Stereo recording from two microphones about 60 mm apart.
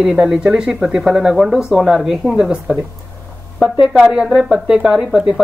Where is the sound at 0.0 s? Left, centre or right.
Centre.